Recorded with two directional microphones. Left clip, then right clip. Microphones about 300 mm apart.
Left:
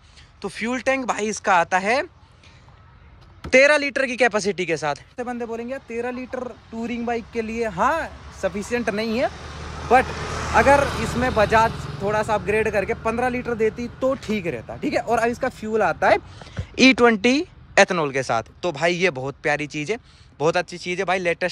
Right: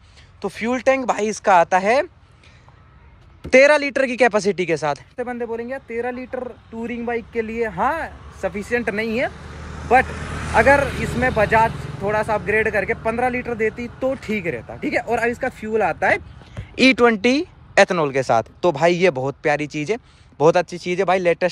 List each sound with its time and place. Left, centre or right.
0.4 s speech: centre
3.4 s speech: centre
10.0 s vehicle: left
10.5 s speech: centre